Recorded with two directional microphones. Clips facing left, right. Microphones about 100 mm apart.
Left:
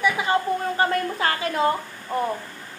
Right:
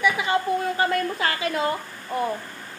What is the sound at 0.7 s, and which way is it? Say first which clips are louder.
Speech: left 1 dB; 40° left (ahead or behind).